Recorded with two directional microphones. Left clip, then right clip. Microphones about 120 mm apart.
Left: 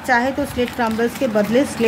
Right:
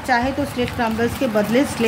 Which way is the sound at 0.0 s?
25° left (ahead or behind).